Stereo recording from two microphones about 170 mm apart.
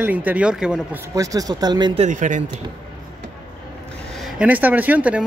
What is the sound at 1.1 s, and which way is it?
Speech, 20° right (ahead or behind).